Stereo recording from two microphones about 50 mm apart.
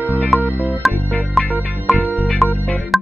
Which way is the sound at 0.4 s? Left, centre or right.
Right.